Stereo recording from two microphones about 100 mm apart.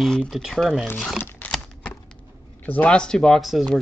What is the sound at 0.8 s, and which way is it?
Speech, 15° left (ahead or behind).